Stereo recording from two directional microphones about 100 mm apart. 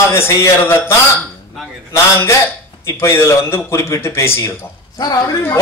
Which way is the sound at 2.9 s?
25° left (ahead or behind).